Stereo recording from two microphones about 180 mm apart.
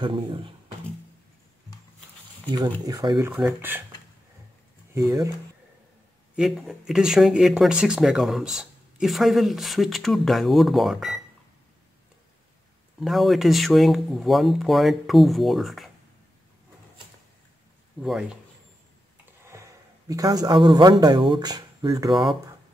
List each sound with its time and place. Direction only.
0.0 s speech: 25° right (ahead or behind)
2.5 s speech: 20° right (ahead or behind)
4.9 s speech: 15° right (ahead or behind)
6.3 s speech: centre (ahead or behind)
13.0 s speech: centre (ahead or behind)
18.0 s speech: 5° right (ahead or behind)
19.5 s a sound: 15° right (ahead or behind)
20.1 s speech: 20° right (ahead or behind)
22.1 s speech: centre (ahead or behind)